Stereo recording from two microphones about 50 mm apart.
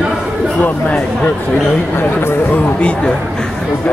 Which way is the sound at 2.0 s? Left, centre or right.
Left.